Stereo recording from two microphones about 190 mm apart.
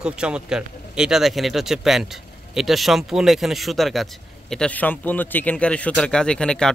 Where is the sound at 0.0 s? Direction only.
5° right (ahead or behind).